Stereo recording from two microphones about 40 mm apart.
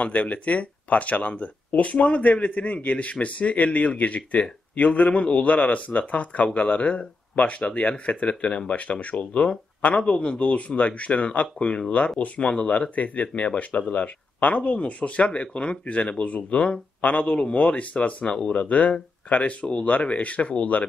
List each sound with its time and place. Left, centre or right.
0.0 s a man's voice: left